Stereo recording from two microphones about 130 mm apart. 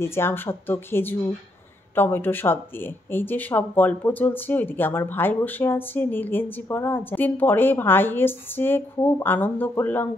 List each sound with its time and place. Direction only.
0.0 s speech: 20° left (ahead or behind)